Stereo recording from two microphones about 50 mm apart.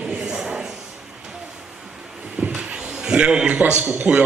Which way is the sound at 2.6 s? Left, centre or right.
Centre.